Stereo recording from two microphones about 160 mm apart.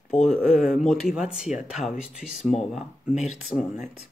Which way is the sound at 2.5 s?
45° left (ahead or behind).